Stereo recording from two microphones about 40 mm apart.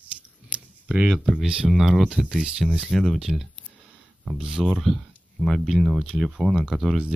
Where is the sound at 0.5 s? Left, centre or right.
Right.